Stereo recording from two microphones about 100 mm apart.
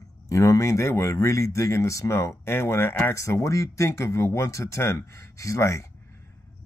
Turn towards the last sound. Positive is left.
turn(degrees=30)  # may be behind; listen again after turning